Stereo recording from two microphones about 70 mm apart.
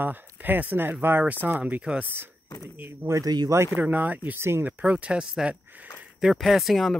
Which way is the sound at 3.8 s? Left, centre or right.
Right.